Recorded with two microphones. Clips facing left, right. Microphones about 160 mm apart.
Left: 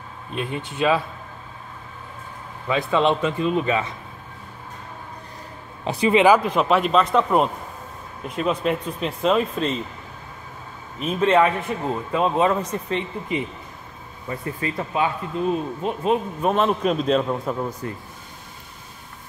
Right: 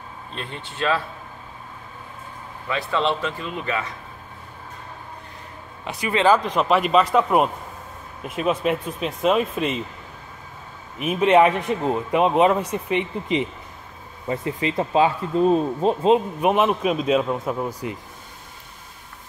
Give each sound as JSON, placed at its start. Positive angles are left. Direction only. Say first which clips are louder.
{"t": 0.3, "sound": "speech", "louder": "left 7 dB", "side_deg": 10}
{"t": 2.9, "sound": "speech", "louder": "left 3 dB", "side_deg": 15}
{"t": 5.9, "sound": "speech", "louder": "left 7 dB", "side_deg": 30}
{"t": 6.1, "sound": "speech", "louder": "left 1 dB", "side_deg": 10}
{"t": 11.0, "sound": "a man's voice", "louder": "right 2 dB", "side_deg": -15}
{"t": 14.2, "sound": "speech", "louder": "right 3 dB", "side_deg": -20}
{"t": 16.3, "sound": "a man's voice", "louder": "right 1 dB", "side_deg": -10}